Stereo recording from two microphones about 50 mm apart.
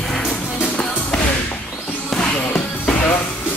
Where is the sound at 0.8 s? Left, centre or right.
Left.